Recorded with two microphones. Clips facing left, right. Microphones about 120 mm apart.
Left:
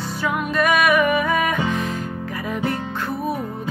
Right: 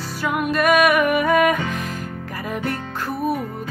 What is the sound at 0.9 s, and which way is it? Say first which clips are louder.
Music: right 2 dB; 55° right (ahead or behind).